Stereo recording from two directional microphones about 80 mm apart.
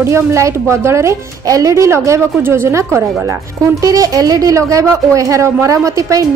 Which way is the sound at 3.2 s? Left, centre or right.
Right.